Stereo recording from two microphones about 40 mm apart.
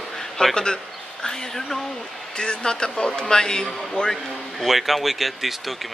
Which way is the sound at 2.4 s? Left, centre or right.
Left.